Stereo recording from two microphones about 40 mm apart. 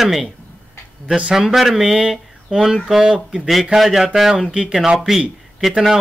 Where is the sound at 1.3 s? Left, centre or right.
Centre.